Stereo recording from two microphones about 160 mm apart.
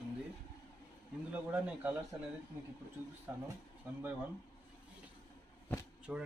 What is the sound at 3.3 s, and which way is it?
Speech, 15° right (ahead or behind).